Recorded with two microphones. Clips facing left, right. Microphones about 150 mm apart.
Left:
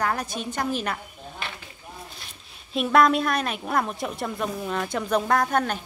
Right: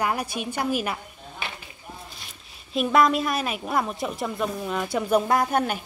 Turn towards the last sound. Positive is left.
turn(degrees=-10)  # may be behind; listen again after turning